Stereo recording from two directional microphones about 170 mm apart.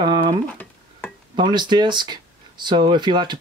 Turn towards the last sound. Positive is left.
turn(degrees=-25)  # may be behind; listen again after turning